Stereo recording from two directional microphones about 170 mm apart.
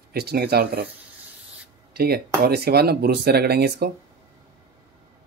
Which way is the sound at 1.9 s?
65° right (ahead or behind).